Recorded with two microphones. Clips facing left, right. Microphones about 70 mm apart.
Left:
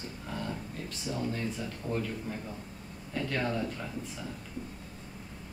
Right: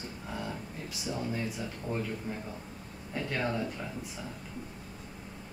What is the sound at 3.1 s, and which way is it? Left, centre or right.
Speech, centre.